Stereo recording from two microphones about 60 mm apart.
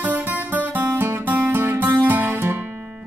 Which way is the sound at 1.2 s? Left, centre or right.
Right.